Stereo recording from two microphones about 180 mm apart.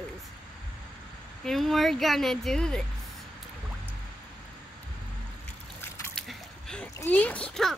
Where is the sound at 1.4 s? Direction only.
Centre (ahead or behind).